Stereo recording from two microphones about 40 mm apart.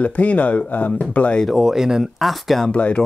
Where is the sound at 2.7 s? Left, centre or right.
Left.